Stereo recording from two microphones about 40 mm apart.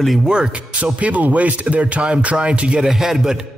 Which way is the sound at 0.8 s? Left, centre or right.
Right.